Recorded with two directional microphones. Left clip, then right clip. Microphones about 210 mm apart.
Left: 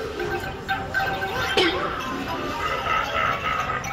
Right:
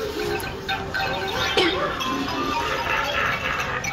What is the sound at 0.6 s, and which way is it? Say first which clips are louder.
Music: left 1 dB; 5° left (ahead or behind).